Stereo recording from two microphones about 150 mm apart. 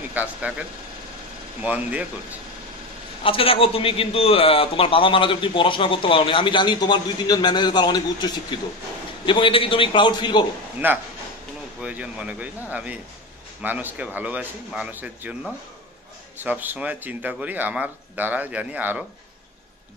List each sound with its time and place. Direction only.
0.1 s speech: 10° right (ahead or behind)
3.3 s a man's voice: 35° left (ahead or behind)
10.8 s speech: 10° right (ahead or behind)
16.3 s speech: 10° right (ahead or behind)